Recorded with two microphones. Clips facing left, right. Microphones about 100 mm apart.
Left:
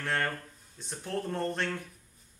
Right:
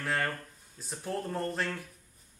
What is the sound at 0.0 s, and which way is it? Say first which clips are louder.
Speech: even; centre (ahead or behind).